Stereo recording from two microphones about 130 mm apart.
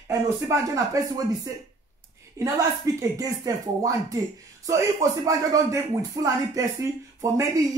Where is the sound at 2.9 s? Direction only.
25° right (ahead or behind).